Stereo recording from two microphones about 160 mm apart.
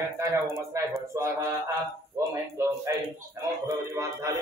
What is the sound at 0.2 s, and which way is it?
Speech, 20° right (ahead or behind).